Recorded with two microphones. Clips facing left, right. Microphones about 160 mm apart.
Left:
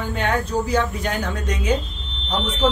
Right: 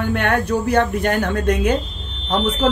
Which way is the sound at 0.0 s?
65° right (ahead or behind).